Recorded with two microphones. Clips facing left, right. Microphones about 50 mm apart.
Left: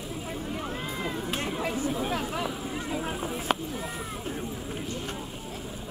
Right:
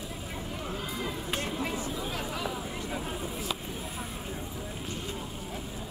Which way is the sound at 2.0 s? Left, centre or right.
Left.